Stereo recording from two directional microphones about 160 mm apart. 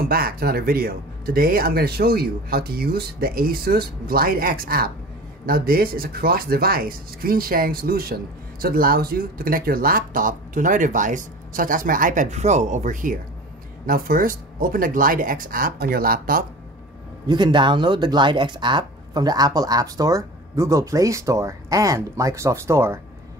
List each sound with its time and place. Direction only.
0.1 s speech: 70° right (ahead or behind)
17.3 s speech: 30° right (ahead or behind)